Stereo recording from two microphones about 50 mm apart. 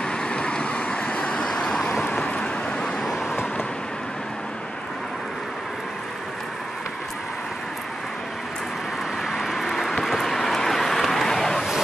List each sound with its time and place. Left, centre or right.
0.0 s vehicle: centre
9.3 s vehicle: centre